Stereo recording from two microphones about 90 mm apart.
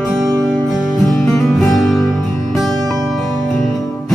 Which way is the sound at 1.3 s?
5° left (ahead or behind).